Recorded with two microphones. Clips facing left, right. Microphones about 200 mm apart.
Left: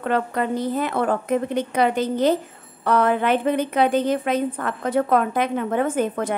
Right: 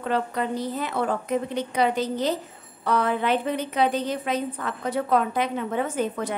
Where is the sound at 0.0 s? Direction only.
55° left (ahead or behind).